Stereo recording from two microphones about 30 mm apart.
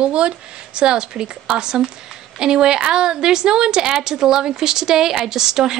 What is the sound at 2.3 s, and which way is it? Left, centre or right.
A woman's voice, right.